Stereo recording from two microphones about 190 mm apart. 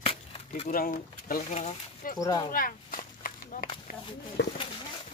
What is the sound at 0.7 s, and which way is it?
Speech, 50° left (ahead or behind).